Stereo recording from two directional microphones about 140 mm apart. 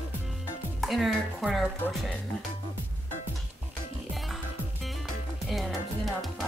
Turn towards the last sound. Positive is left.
turn(degrees=0)  # may be behind; listen again after turning